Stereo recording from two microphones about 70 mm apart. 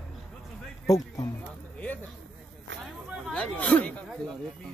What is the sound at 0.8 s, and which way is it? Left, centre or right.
Speech, left.